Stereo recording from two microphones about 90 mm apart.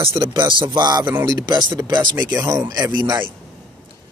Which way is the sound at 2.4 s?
35° right (ahead or behind).